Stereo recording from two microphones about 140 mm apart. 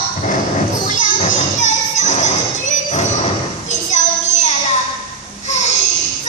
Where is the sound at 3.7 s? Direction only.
55° left (ahead or behind).